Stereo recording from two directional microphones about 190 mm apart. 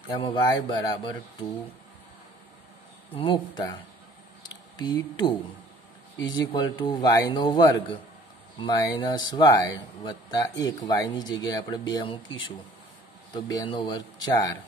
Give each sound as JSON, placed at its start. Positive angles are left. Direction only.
{"t": 0.1, "sound": "speech", "side_deg": 25}
{"t": 3.2, "sound": "speech", "side_deg": 25}
{"t": 4.7, "sound": "speech", "side_deg": 25}
{"t": 13.3, "sound": "speech", "side_deg": 20}